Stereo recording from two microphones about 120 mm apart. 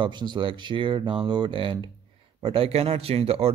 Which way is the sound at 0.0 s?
40° right (ahead or behind).